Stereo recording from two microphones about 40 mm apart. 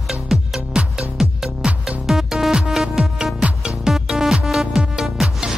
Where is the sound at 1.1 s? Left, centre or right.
Centre.